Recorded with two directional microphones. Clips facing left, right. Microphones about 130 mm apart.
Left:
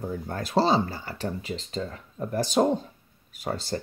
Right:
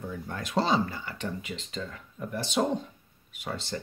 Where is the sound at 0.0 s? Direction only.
35° left (ahead or behind).